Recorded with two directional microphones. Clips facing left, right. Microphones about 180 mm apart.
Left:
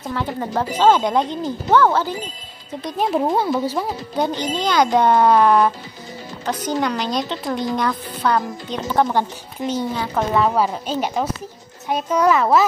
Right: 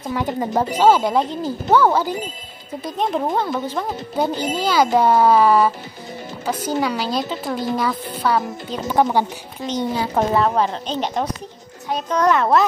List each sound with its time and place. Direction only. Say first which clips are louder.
0.1 s speech: right 3 dB; 15° right (ahead or behind)
2.8 s a woman's voice: left 2 dB; 5° left (ahead or behind)
4.2 s a woman's voice: right 1 dB; 5° right (ahead or behind)
9.6 s speech: left 3 dB; 20° left (ahead or behind)
10.4 s a woman's voice: even; 5° left (ahead or behind)